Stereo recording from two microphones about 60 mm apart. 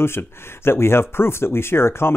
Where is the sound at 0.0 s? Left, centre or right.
Left.